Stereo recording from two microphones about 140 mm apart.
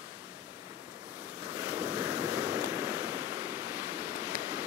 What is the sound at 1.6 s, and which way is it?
Waves, 30° right (ahead or behind).